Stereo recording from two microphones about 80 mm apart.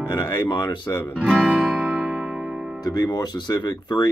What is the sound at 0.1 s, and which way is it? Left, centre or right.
Speech, left.